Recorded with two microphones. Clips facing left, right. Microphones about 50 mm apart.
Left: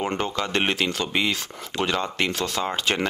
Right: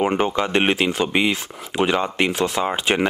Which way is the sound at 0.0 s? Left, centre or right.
Centre.